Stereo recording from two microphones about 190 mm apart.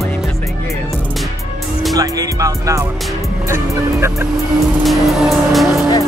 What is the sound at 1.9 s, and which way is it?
Music, 20° right (ahead or behind).